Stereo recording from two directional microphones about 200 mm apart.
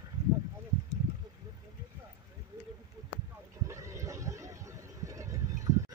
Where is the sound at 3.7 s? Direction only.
15° right (ahead or behind).